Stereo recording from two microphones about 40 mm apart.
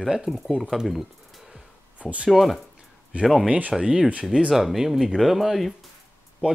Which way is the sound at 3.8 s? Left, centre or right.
Right.